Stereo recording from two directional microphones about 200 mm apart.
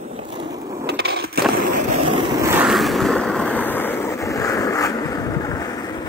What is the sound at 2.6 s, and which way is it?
Vehicle, centre (ahead or behind).